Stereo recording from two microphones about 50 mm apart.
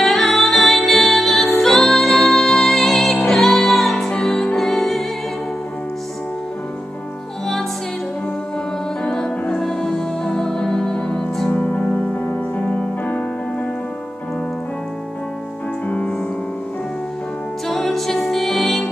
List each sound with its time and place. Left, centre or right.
0.0 s music: centre
9.0 s music: centre
11.5 s music: left
17.6 s music: centre